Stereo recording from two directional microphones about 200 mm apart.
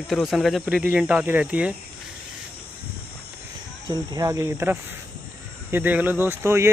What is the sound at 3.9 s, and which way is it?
Speech, 20° right (ahead or behind).